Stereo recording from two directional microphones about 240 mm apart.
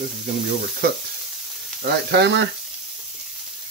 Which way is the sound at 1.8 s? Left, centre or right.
Right.